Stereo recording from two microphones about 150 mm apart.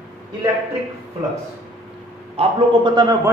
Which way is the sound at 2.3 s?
30° right (ahead or behind).